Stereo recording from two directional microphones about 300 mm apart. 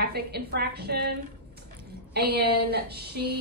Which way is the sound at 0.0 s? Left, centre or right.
Right.